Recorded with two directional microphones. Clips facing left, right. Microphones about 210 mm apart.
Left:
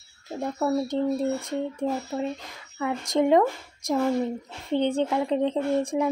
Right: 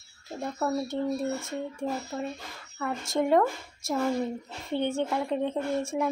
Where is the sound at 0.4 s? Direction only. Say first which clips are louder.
Left 4 dB; 10° left (ahead or behind).